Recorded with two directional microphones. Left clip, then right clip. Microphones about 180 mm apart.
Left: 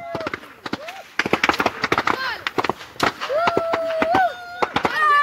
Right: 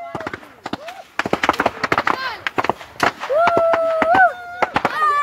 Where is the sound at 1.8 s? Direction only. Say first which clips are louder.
Right 2 dB; centre (ahead or behind).